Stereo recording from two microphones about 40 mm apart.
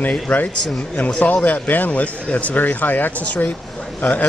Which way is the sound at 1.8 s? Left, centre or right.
Left.